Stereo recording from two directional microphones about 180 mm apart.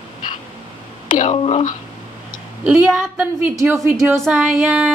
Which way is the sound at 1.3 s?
35° left (ahead or behind).